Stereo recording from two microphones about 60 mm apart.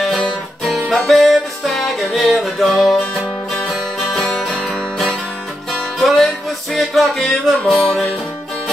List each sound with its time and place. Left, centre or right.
0.8 s music: centre
4.1 s music: centre
5.7 s music: centre